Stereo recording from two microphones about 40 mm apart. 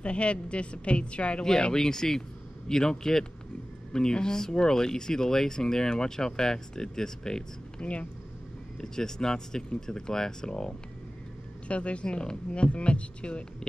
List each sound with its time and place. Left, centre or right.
0.0 s speech: left
1.6 s speech: centre
7.8 s speech: left
8.8 s speech: centre
11.6 s speech: left